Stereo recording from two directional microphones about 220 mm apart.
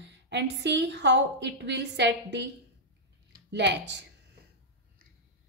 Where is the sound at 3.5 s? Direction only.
50° right (ahead or behind).